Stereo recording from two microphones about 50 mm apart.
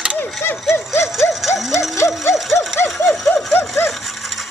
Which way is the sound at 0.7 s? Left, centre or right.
Centre.